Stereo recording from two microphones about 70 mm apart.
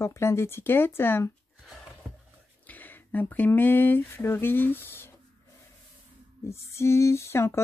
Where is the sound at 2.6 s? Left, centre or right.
Left.